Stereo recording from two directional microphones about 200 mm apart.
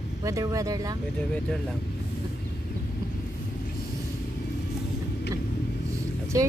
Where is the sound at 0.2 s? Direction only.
15° right (ahead or behind).